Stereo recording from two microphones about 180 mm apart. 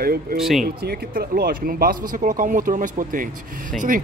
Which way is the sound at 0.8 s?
55° right (ahead or behind).